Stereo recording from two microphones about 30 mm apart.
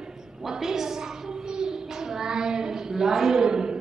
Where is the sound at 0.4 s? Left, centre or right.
Centre.